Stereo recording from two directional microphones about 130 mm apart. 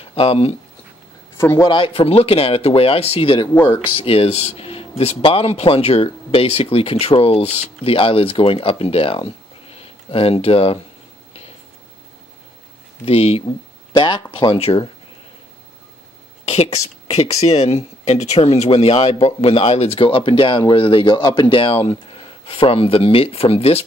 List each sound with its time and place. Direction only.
0.0 s speech: 45° left (ahead or behind)
1.4 s a man's voice: 20° left (ahead or behind)
1.7 s speech: 45° left (ahead or behind)
13.0 s speech: 50° left (ahead or behind)
13.9 s speech: 40° left (ahead or behind)
16.4 s speech: 55° left (ahead or behind)